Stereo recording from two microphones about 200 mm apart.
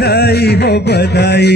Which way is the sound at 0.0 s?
55° left (ahead or behind).